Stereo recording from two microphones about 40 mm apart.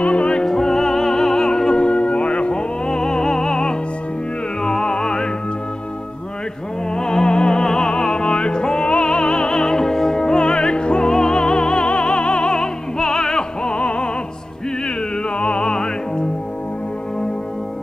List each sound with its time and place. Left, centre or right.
0.0 s opera: left
0.5 s music: centre; by 2.6 s left
2.9 s music: centre
7.0 s music: centre
15.3 s music: left